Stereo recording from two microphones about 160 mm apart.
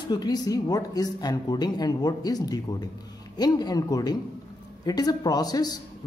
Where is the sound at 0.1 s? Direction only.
25° left (ahead or behind).